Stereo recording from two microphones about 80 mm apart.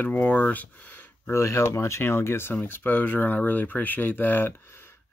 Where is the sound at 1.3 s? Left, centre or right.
Left.